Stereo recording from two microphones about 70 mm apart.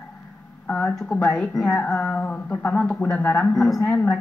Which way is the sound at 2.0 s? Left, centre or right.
Left.